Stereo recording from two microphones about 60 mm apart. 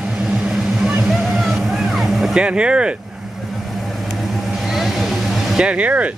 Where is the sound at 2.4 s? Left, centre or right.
Centre.